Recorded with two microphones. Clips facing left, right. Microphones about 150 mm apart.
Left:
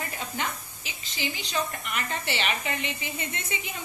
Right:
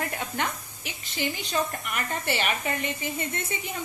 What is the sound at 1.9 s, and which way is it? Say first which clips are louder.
A woman's voice: right 2 dB; 50° right (ahead or behind).